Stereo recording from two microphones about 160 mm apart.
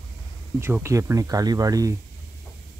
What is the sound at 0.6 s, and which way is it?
Speech, 15° right (ahead or behind).